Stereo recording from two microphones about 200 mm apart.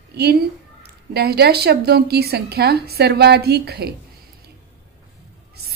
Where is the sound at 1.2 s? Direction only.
50° right (ahead or behind).